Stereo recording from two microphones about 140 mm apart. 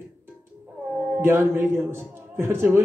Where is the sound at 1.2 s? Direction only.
15° right (ahead or behind).